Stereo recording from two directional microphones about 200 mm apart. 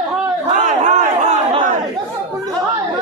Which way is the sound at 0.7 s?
40° right (ahead or behind).